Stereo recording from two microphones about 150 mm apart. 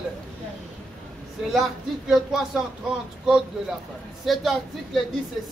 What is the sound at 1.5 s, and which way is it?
Speech, centre (ahead or behind).